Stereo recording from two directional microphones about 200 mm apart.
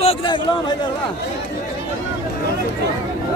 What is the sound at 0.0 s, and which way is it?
Speech, 25° left (ahead or behind).